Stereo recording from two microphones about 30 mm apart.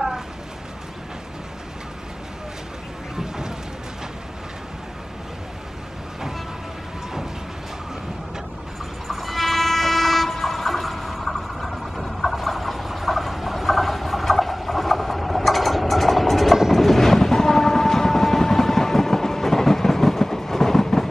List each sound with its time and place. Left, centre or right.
3.2 s speech: right
9.0 s train: centre
12.4 s vehicle: centre